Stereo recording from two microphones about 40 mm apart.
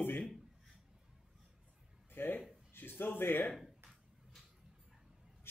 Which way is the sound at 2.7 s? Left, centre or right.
Left.